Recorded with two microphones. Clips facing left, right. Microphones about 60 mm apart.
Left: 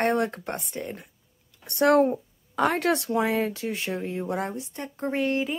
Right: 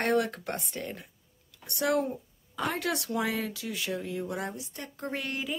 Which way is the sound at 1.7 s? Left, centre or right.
Left.